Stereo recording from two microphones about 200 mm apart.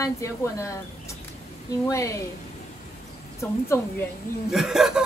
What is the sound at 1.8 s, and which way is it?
Speech, 15° left (ahead or behind).